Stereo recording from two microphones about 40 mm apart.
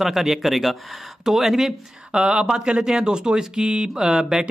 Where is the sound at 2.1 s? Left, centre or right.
Centre.